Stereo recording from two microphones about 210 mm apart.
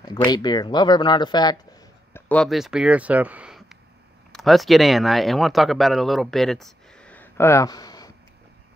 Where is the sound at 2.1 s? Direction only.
5° left (ahead or behind).